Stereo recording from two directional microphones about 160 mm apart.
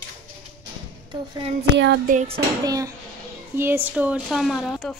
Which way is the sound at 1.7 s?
90° right.